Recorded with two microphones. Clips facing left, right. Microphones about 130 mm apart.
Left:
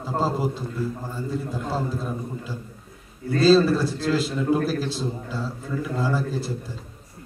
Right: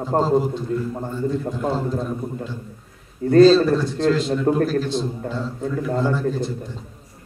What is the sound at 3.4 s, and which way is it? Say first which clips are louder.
A man's voice: right 4 dB; 5° left (ahead or behind).